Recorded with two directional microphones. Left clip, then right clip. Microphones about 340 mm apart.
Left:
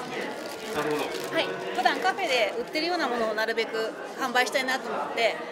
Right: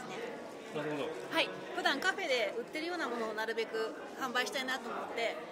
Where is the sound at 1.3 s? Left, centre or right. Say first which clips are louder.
Left 5 dB; right; by 2.5 s centre.